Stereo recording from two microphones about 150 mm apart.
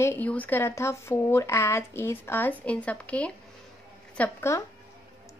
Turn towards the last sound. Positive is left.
turn(degrees=15)  # may be behind; listen again after turning